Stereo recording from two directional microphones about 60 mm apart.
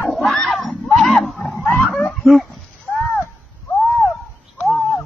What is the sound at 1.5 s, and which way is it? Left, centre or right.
Roaring cats, left.